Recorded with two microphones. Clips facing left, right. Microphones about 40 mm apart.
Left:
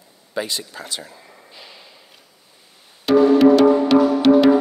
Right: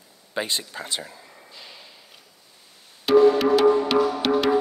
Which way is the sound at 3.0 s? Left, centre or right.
Centre.